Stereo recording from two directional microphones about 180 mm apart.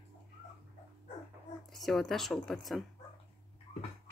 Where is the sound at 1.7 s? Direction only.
Centre (ahead or behind).